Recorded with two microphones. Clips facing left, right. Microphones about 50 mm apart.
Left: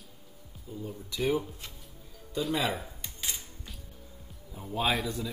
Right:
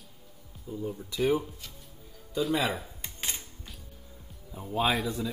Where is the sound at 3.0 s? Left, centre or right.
Right.